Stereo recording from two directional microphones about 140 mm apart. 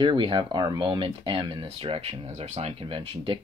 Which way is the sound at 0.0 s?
35° right (ahead or behind).